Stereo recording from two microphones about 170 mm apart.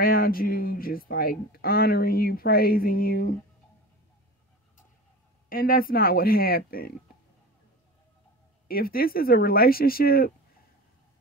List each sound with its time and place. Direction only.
0.0 s speech: 60° left (ahead or behind)
5.5 s speech: 60° left (ahead or behind)
8.6 s speech: 60° left (ahead or behind)